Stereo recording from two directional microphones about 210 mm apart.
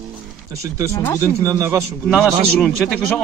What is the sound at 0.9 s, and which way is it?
Speech, 15° left (ahead or behind).